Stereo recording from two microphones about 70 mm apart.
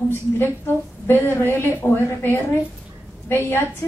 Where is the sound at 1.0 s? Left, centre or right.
Left.